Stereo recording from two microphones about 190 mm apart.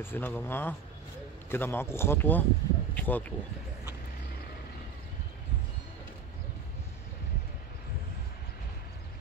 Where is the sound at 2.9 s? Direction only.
10° left (ahead or behind).